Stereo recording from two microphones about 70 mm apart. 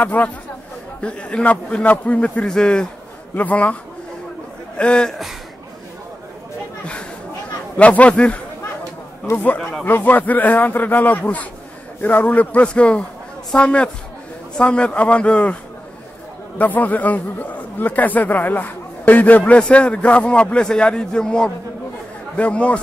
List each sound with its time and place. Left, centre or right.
0.0 s a man's voice: left
4.7 s a man's voice: centre
7.7 s a man's voice: left
9.3 s a man's voice: left
9.6 s a man's voice: centre
9.8 s a man's voice: left
16.5 s a man's voice: left